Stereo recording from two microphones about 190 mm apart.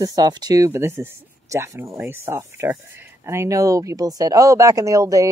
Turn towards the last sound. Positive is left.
turn(degrees=-15)  # may be behind; listen again after turning